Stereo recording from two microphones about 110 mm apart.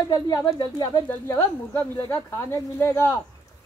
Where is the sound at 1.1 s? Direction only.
20° left (ahead or behind).